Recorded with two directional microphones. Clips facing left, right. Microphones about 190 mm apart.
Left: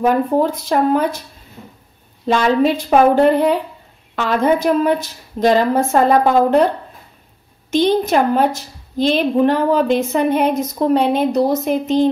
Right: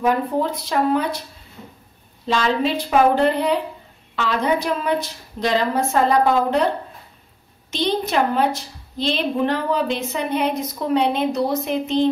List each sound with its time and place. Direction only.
0.0 s a woman's voice: 45° left (ahead or behind)
2.2 s a woman's voice: 50° left (ahead or behind)
7.7 s a woman's voice: 50° left (ahead or behind)